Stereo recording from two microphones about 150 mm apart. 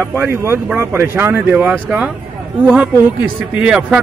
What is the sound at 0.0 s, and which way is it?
Speech, 15° right (ahead or behind).